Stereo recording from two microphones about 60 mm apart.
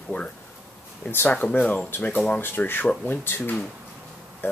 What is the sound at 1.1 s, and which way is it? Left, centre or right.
Speech, left.